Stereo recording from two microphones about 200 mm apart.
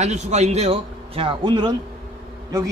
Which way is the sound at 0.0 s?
35° right (ahead or behind).